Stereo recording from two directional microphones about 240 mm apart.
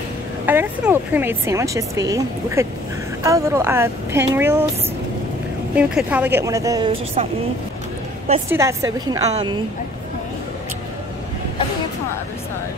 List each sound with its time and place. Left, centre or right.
0.5 s speech: centre
5.8 s speech: centre; by 7.2 s right
8.5 s speech: centre